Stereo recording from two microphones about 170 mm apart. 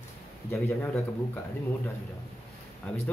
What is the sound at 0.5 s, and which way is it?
Speech, 15° left (ahead or behind).